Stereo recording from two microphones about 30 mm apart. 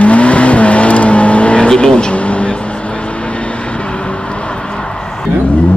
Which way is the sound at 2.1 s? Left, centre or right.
Left.